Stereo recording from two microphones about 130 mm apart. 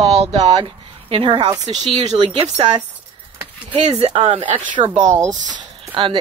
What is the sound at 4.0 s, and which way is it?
Speech, 45° right (ahead or behind).